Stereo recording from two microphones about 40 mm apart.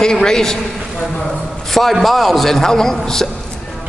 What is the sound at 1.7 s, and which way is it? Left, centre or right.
A man's voice, centre.